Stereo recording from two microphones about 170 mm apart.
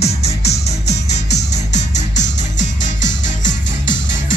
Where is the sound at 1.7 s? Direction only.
45° left (ahead or behind).